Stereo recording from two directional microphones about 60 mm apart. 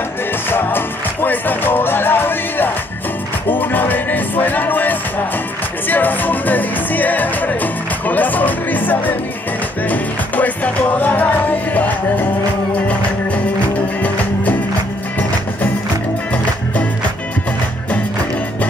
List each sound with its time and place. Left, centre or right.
0.5 s music: left
14.0 s music: left